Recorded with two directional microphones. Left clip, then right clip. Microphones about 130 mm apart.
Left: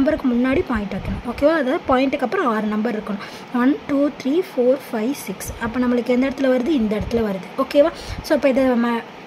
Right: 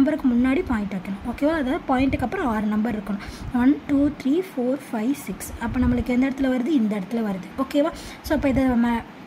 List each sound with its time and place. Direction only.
0.0 s a woman's voice: centre (ahead or behind)